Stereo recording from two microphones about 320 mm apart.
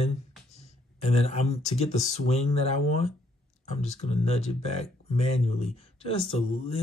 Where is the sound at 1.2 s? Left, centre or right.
Centre.